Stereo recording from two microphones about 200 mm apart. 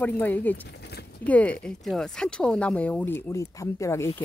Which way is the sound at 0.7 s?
55° left (ahead or behind).